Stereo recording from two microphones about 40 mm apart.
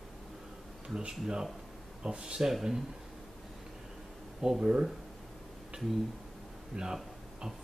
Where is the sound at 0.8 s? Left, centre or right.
Centre.